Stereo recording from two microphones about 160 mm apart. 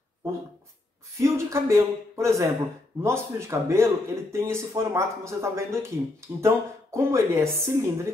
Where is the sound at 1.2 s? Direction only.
20° right (ahead or behind).